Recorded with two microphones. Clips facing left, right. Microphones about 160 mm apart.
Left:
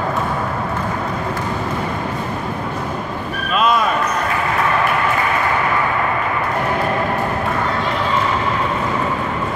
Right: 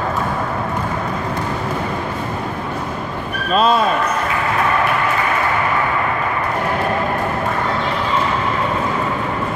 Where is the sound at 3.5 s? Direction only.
30° right (ahead or behind).